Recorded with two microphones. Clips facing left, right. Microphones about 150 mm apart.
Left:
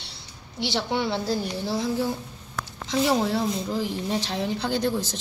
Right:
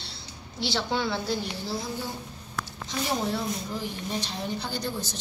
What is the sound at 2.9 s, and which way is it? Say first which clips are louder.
A woman's voice: left 7 dB; 90° left.